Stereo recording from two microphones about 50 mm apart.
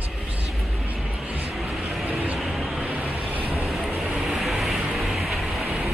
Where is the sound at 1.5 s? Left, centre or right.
Centre.